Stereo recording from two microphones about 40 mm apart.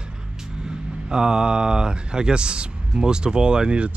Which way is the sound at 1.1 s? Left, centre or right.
Centre.